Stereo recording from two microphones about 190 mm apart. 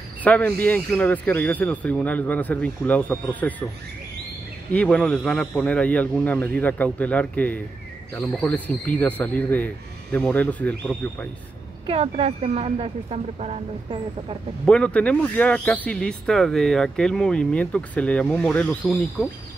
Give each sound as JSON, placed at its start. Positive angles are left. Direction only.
{"t": 0.2, "sound": "speech", "side_deg": 10}
{"t": 4.7, "sound": "speech", "side_deg": 5}
{"t": 11.8, "sound": "speech", "side_deg": -30}
{"t": 14.7, "sound": "speech", "side_deg": 5}